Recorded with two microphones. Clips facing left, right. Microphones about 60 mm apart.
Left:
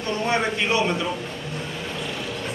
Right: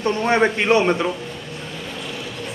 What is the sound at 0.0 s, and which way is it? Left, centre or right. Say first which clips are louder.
A man's voice: right 6 dB; right.